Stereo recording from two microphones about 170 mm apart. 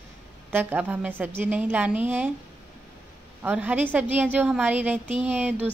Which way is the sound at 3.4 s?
10° right (ahead or behind).